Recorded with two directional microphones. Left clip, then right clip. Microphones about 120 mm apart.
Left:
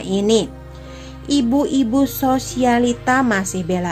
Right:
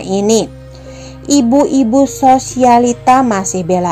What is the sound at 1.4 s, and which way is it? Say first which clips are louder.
A woman's voice: right 7 dB; 25° right (ahead or behind).